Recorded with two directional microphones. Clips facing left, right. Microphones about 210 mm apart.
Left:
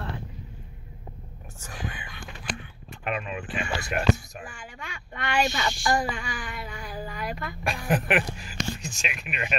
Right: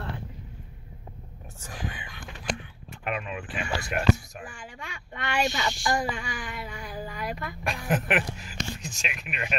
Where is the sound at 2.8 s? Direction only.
5° right (ahead or behind).